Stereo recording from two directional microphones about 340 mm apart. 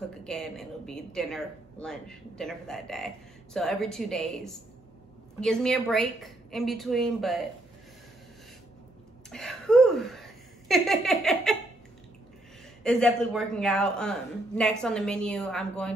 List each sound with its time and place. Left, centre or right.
0.2 s speech: centre
9.3 s speech: centre
12.8 s speech: centre